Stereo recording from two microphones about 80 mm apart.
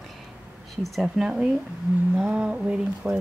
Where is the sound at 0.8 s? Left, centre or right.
Centre.